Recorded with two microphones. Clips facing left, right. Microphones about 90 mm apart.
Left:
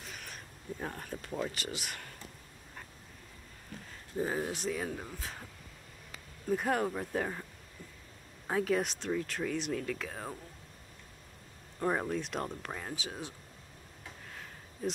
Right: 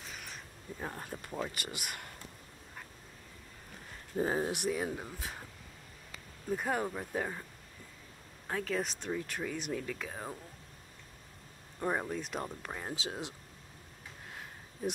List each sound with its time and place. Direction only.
0.1 s a sound: centre (ahead or behind)
0.8 s speech: 15° right (ahead or behind)
4.2 s speech: 30° right (ahead or behind)
4.5 s speech: 15° right (ahead or behind)
6.5 s speech: centre (ahead or behind)
8.5 s speech: 10° left (ahead or behind)
9.0 s speech: 5° right (ahead or behind)
11.8 s speech: 5° right (ahead or behind)
12.8 s speech: 25° right (ahead or behind)